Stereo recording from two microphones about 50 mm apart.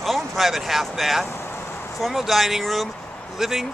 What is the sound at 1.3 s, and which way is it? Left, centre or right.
Vehicle, left.